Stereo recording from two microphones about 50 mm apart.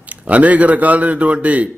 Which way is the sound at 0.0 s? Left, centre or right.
Right.